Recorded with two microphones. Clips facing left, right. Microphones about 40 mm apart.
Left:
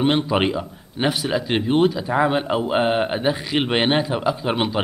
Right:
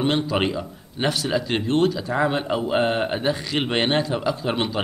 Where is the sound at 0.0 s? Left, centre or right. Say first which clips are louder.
Left 3 dB; centre.